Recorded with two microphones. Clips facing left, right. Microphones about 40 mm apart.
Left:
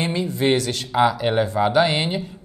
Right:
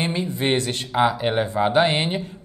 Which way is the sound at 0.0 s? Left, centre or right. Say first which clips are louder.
Left 2 dB; right.